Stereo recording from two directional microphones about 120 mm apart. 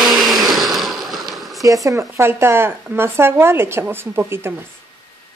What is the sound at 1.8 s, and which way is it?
Speech, 25° right (ahead or behind).